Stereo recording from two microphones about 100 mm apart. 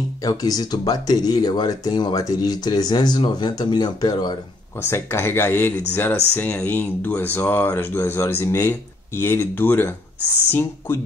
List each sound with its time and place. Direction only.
0.2 s speech: 40° left (ahead or behind)
4.8 s speech: 25° left (ahead or behind)